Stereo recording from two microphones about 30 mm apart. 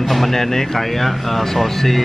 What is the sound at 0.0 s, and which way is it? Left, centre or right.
Speech, centre.